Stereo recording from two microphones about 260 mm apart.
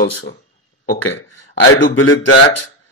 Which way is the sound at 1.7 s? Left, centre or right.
Left.